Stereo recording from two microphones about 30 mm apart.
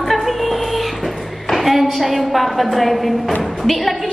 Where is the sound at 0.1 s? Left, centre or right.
Centre.